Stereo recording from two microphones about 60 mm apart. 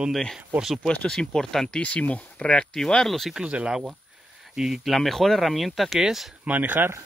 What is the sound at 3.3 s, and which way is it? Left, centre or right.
Speech, centre.